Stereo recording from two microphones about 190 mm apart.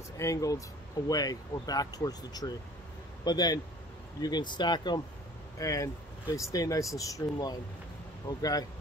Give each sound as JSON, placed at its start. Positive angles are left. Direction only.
{"t": 0.2, "sound": "speech", "side_deg": 15}